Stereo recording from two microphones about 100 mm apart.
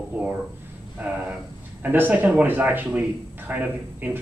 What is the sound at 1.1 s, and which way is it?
A man's voice, 15° right (ahead or behind).